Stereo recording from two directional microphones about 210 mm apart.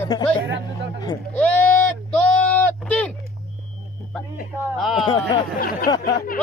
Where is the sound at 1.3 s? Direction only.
5° left (ahead or behind).